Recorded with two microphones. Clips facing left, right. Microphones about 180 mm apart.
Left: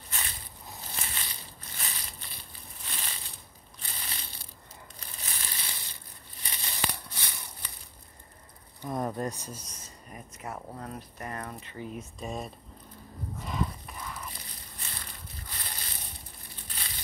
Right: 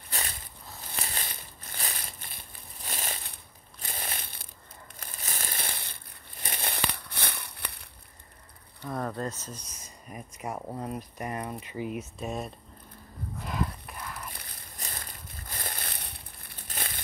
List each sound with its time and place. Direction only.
1.0 s crushing: 40° right (ahead or behind)
3.8 s ratchet: 50° right (ahead or behind)
5.0 s crumpling: 45° right (ahead or behind); by 7.8 s 65° right (ahead or behind)
8.8 s speech: 15° left (ahead or behind)
9.8 s speech: 15° right (ahead or behind)
12.2 s speech: centre (ahead or behind)
13.4 s a sound: centre (ahead or behind)
14.8 s crushing: 45° right (ahead or behind)
16.6 s crumpling: 50° right (ahead or behind)